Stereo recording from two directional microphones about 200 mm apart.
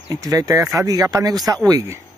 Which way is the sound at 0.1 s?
15° right (ahead or behind).